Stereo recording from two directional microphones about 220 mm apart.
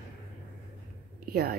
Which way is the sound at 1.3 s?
45° right (ahead or behind).